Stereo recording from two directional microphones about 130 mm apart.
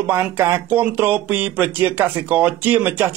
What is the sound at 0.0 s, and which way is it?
Speech, 15° right (ahead or behind).